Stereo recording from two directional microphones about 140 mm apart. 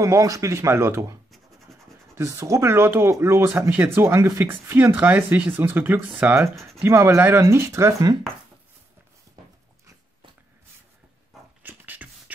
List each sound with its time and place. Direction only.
0.0 s speech: 25° right (ahead or behind)
2.1 s speech: 20° right (ahead or behind)
6.5 s speech: centre (ahead or behind)
6.8 s speech: 20° right (ahead or behind)
11.6 s beatboxing: 15° right (ahead or behind)